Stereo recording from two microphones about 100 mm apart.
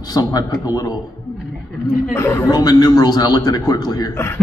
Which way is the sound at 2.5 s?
40° left (ahead or behind).